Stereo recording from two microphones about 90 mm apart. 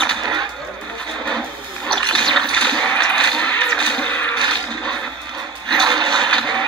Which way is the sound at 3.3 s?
15° left (ahead or behind).